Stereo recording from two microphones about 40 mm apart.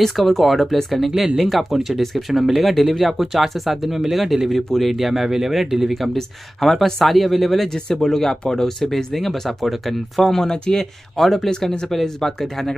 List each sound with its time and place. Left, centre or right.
0.0 s speech: centre
7.7 s speech: centre
10.3 s speech: centre
11.1 s speech: centre